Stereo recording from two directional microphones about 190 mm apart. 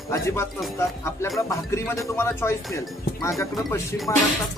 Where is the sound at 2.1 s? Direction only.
15° left (ahead or behind).